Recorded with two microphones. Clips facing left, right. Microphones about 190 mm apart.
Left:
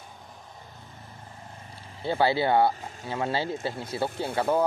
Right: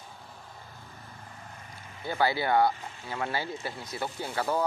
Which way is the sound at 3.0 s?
25° left (ahead or behind).